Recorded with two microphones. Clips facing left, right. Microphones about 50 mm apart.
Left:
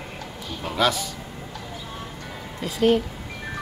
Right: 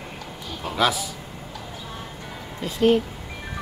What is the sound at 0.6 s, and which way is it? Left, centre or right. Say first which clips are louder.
Music: even; centre.